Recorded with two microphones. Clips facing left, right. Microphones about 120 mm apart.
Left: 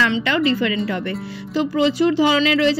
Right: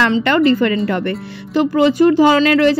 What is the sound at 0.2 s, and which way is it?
A woman's voice, 55° right (ahead or behind).